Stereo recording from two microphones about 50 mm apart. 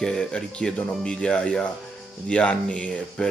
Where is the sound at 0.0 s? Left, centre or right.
Centre.